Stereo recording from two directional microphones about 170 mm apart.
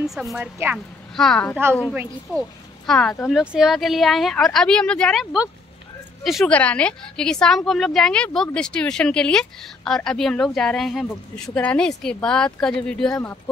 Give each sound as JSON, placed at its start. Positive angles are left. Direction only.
{"t": 0.1, "sound": "a woman's voice", "side_deg": 0}
{"t": 2.9, "sound": "a woman's voice", "side_deg": 5}
{"t": 13.1, "sound": "speech", "side_deg": 15}